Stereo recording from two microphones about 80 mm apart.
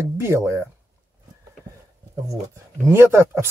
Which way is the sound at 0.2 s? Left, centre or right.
Right.